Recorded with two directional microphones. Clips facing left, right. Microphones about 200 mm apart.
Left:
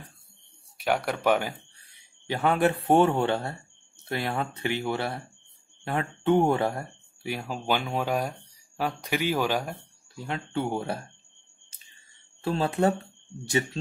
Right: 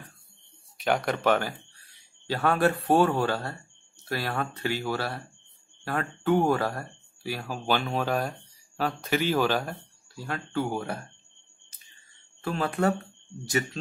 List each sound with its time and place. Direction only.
0.7 s a man's voice: 10° left (ahead or behind); by 11.0 s 25° left (ahead or behind)
12.4 s a man's voice: 30° left (ahead or behind)